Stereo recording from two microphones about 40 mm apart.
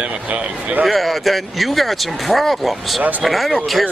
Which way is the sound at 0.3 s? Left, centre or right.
Right.